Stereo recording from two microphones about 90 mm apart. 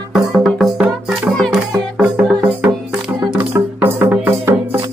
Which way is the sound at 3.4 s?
25° right (ahead or behind).